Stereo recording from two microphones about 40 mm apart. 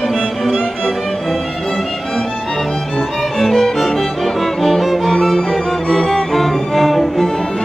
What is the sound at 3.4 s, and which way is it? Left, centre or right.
Music, centre.